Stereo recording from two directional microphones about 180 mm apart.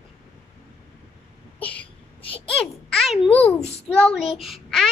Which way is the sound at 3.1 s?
30° left (ahead or behind).